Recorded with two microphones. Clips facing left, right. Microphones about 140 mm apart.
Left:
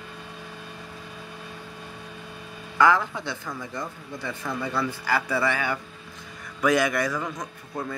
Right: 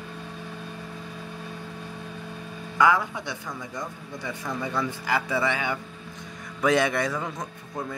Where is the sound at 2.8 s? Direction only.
15° right (ahead or behind).